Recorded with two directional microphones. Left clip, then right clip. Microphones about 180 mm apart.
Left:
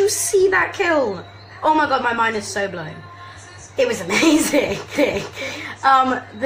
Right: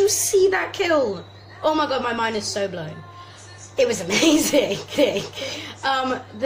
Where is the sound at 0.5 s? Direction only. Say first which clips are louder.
Left 3 dB; 15° right (ahead or behind).